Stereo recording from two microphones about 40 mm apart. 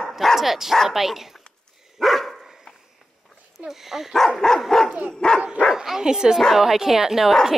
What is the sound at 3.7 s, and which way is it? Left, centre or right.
Speech, centre.